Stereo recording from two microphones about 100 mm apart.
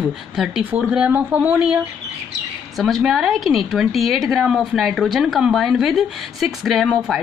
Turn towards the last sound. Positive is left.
turn(degrees=-5)  # may be behind; listen again after turning